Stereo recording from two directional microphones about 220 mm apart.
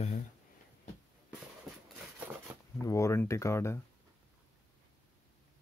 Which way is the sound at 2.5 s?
10° right (ahead or behind).